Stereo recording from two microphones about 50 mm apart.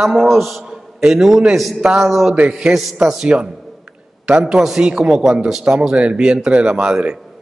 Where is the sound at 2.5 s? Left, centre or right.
Centre.